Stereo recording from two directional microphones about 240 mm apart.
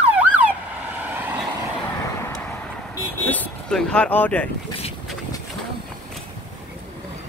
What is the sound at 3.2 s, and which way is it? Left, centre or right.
Vehicle, centre.